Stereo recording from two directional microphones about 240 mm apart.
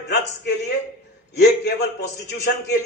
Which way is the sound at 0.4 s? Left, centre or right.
Left.